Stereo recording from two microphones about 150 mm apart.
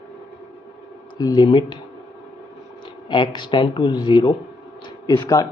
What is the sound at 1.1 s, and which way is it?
Speech, 30° left (ahead or behind).